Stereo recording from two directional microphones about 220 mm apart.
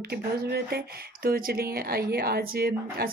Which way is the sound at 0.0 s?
45° right (ahead or behind).